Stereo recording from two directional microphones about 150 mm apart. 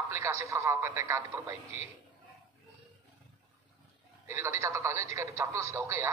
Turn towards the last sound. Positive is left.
turn(degrees=-20)  # may be behind; listen again after turning